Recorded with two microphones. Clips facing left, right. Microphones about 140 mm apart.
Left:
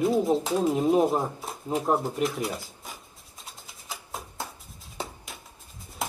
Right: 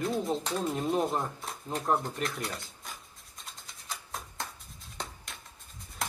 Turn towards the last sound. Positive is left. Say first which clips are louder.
# left 4 dB
turn(degrees=5)  # may be behind; listen again after turning